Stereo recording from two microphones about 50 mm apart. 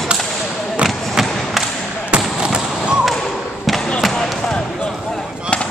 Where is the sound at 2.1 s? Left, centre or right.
Right.